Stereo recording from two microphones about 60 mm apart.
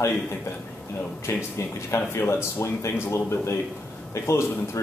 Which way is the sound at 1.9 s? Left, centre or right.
Left.